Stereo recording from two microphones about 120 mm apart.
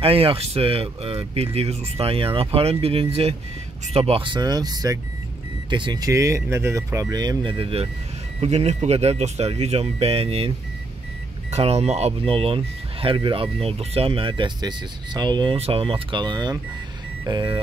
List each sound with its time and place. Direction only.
0.0 s speech: 50° right (ahead or behind)
6.0 s speech: 25° right (ahead or behind)
7.5 s speech: 50° right (ahead or behind)
8.4 s speech: 65° right (ahead or behind)
11.5 s speech: 60° right (ahead or behind); by 15.5 s 40° right (ahead or behind)
15.5 s speech: 55° right (ahead or behind); by 17.6 s 35° right (ahead or behind)